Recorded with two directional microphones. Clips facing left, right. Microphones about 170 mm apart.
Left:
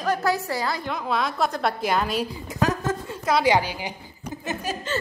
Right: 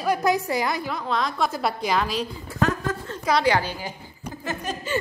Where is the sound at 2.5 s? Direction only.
20° left (ahead or behind).